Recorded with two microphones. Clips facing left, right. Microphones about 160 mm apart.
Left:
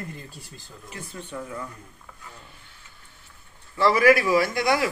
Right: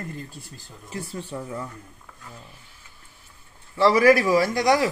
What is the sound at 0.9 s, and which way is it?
Speech, 35° right (ahead or behind).